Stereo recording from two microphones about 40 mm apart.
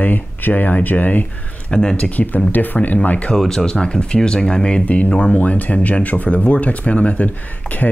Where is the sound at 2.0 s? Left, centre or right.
Left.